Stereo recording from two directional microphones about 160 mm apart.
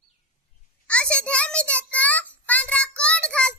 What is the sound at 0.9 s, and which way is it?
Child singing, 5° left (ahead or behind).